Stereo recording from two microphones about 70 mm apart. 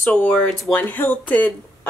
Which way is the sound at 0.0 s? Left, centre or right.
Left.